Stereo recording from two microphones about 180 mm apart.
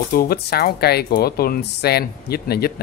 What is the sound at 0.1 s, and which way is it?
Speech, 55° left (ahead or behind).